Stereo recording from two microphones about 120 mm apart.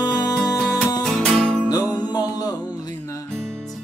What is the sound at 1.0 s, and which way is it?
Music, 5° left (ahead or behind).